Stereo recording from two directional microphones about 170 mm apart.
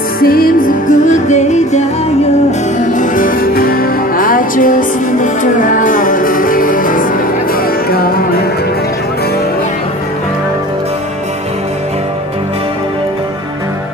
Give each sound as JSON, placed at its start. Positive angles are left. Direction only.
{"t": 0.2, "sound": "music", "side_deg": 60}